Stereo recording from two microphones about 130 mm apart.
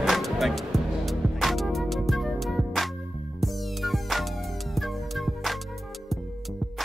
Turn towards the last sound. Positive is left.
turn(degrees=0)  # may be behind; listen again after turning